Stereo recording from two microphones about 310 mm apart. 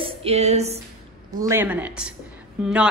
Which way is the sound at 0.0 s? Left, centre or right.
Centre.